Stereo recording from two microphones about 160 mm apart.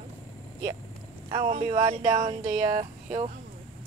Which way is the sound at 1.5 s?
50° right (ahead or behind).